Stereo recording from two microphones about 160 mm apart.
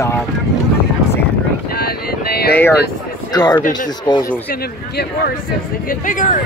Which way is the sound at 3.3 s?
25° left (ahead or behind).